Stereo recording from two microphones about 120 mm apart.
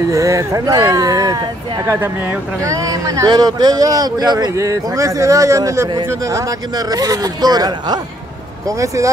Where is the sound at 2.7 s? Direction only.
30° right (ahead or behind).